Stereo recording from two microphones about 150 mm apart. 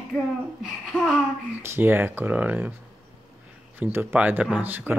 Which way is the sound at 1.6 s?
15° right (ahead or behind).